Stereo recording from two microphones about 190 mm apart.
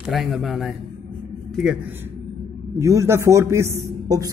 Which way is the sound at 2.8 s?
15° right (ahead or behind).